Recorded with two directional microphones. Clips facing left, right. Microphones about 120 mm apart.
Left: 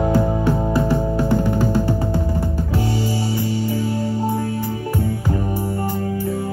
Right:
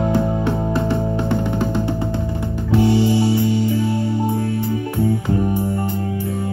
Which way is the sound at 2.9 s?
25° right (ahead or behind).